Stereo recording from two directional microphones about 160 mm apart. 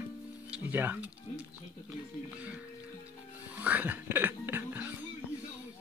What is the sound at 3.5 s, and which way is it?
Music, 10° right (ahead or behind).